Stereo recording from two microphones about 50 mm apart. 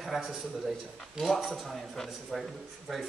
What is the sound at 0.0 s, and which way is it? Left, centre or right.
A man's voice, centre.